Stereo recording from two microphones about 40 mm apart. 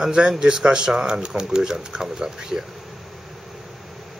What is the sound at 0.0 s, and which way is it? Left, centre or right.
Speech, centre.